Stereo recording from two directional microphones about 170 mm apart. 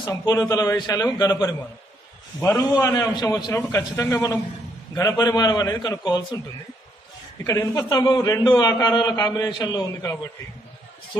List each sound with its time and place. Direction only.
0.0 s a man's voice: 25° left (ahead or behind)
7.4 s a man's voice: 20° left (ahead or behind)